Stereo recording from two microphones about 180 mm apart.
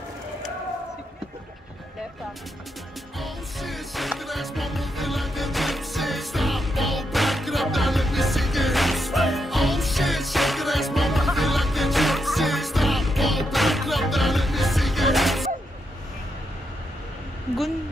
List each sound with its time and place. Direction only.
3.2 s music: centre (ahead or behind)